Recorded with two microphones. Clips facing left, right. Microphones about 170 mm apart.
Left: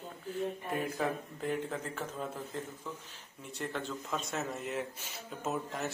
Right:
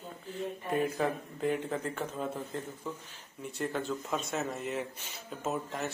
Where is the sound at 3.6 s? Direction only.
5° right (ahead or behind).